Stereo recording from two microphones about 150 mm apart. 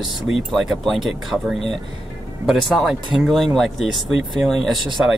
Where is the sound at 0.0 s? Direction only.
Centre (ahead or behind).